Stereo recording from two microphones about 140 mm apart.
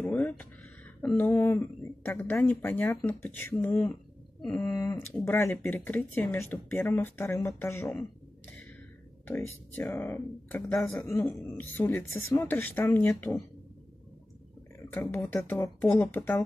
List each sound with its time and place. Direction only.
0.0 s a sound: 15° left (ahead or behind)
1.0 s speech: 10° left (ahead or behind)
9.3 s a woman's voice: 10° left (ahead or behind)
15.0 s speech: 15° left (ahead or behind)